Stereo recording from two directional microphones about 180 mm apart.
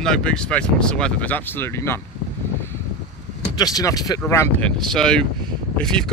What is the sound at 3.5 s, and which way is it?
Speech, 20° left (ahead or behind).